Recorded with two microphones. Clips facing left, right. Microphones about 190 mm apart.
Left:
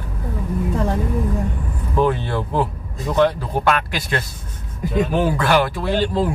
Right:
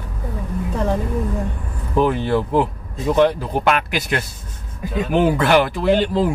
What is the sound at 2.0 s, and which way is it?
Speech, 15° right (ahead or behind).